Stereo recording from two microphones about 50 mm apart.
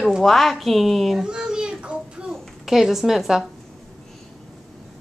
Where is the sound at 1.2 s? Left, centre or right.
Centre.